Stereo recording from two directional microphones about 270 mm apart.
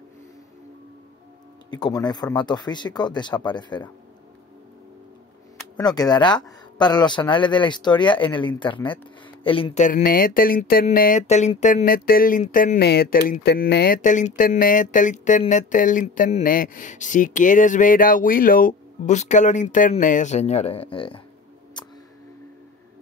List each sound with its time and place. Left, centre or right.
1.7 s speech: centre
5.8 s speech: centre
9.4 s a sound: centre
21.8 s music: centre